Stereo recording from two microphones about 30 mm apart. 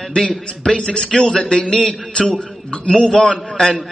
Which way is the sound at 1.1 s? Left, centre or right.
Centre.